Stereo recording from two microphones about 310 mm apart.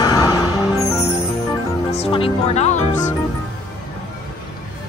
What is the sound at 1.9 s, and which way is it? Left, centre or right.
Music, centre.